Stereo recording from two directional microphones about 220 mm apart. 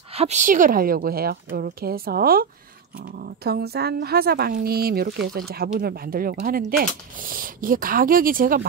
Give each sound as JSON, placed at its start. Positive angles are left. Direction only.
{"t": 0.1, "sound": "a woman's voice", "side_deg": -30}